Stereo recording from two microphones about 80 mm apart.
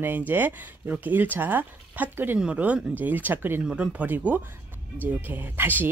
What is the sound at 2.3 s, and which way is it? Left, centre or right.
Speech, centre.